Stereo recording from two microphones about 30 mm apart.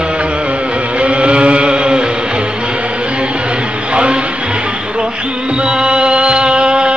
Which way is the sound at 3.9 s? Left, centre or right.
Right.